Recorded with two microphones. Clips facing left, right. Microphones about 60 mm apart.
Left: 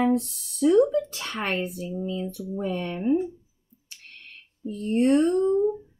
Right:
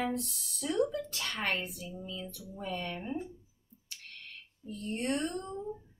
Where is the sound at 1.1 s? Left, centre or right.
Left.